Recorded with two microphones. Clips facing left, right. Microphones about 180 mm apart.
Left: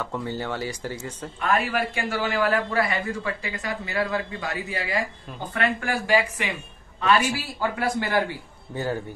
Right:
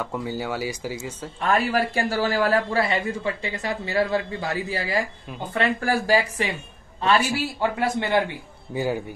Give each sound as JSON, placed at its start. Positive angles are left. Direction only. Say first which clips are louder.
{"t": 0.0, "sound": "speech", "louder": "right 1 dB", "side_deg": -10}
{"t": 1.5, "sound": "a man's voice", "louder": "right 3 dB", "side_deg": -35}
{"t": 8.7, "sound": "speech", "louder": "right 3 dB", "side_deg": -10}